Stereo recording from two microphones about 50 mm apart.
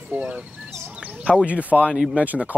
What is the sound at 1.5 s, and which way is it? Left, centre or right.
Speech, right.